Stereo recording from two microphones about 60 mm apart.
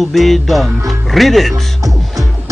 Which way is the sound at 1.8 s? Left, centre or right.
Right.